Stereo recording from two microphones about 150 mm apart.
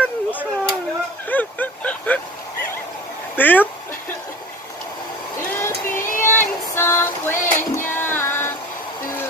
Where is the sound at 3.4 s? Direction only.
10° left (ahead or behind).